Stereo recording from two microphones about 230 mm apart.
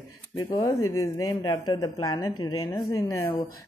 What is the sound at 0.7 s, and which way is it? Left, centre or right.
Speech, left.